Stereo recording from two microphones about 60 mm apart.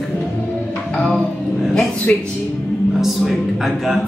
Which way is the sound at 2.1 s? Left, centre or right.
Left.